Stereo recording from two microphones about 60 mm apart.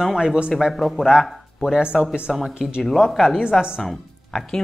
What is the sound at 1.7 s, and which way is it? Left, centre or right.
A woman's voice, centre.